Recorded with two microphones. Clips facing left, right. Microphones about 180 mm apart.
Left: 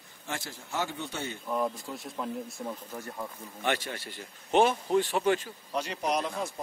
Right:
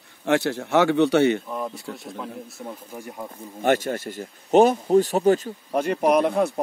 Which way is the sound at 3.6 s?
45° right (ahead or behind).